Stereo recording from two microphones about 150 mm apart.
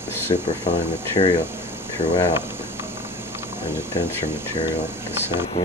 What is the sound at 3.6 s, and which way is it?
Speech, 15° right (ahead or behind).